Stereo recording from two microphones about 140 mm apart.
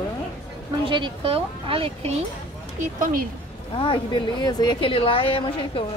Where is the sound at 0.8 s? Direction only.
35° right (ahead or behind).